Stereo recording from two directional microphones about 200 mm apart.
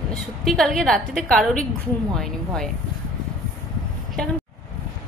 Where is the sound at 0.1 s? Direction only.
Centre (ahead or behind).